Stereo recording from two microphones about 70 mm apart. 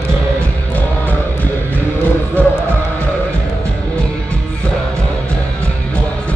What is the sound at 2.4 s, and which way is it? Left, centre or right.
Music, left.